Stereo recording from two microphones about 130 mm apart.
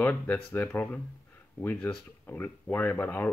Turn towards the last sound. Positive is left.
turn(degrees=15)  # may be behind; listen again after turning